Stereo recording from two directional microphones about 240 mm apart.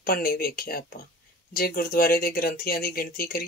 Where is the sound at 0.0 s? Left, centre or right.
Left.